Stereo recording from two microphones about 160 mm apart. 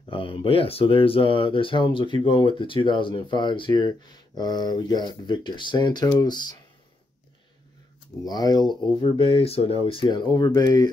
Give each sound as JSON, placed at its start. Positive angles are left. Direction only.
{"t": 0.1, "sound": "speech", "side_deg": 35}
{"t": 8.2, "sound": "speech", "side_deg": 25}